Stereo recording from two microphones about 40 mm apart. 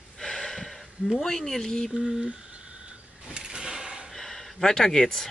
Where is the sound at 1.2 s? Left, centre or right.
Centre.